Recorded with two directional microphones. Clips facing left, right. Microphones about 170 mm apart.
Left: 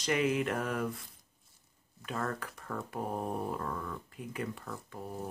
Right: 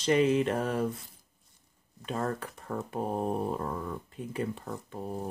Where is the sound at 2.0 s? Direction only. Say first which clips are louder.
Right 4 dB; 25° right (ahead or behind).